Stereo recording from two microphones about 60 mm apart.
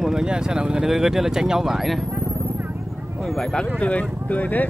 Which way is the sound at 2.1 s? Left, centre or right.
Right.